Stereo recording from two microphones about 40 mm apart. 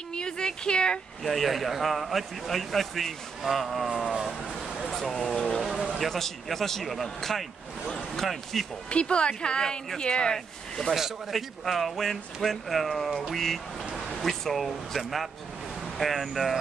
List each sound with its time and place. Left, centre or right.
0.1 s speech: left
1.2 s speech: centre
5.1 s speech: centre
5.6 s a sound: centre
5.9 s speech: centre
8.9 s a woman's voice: left
10.3 s speech: centre